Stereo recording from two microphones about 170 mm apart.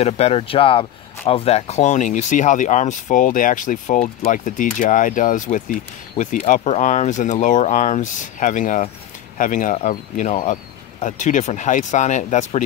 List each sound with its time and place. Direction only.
0.0 s speech: 35° left (ahead or behind)